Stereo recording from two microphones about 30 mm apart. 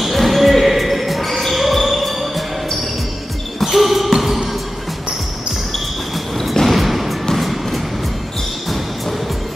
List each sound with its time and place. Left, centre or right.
0.0 s basketball bounce: centre
1.6 s music: centre
3.6 s basketball bounce: centre
6.6 s a sound: centre
7.3 s music: centre